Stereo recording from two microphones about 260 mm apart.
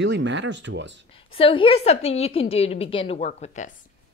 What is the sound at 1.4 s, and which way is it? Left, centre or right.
A woman's voice, centre.